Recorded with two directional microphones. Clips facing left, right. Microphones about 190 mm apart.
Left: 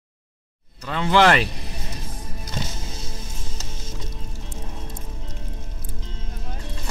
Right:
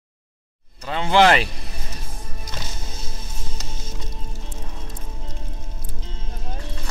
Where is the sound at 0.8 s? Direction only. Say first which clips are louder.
Right 1 dB; 30° right (ahead or behind).